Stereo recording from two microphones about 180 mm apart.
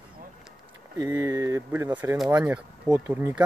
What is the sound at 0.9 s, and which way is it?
Speech, 20° right (ahead or behind).